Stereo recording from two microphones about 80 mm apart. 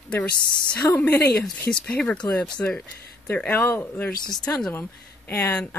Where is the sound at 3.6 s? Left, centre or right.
Left.